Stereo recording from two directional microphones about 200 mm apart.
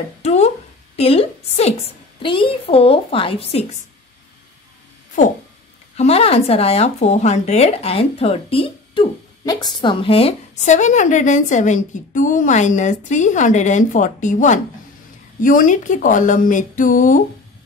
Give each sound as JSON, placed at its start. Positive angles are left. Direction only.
{"t": 0.2, "sound": "a sound", "side_deg": 35}
{"t": 0.9, "sound": "a woman's voice", "side_deg": 30}
{"t": 5.9, "sound": "speech", "side_deg": 30}